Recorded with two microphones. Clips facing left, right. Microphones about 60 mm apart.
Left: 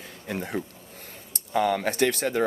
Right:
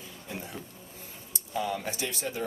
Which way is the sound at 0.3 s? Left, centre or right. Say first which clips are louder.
Left 10 dB; left.